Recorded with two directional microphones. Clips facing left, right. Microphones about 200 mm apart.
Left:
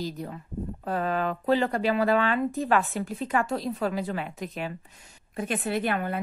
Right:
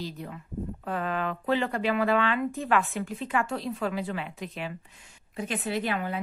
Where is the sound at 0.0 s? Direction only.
40° left (ahead or behind).